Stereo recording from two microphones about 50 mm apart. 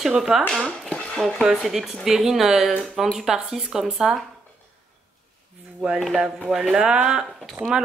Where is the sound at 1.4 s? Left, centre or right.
Centre.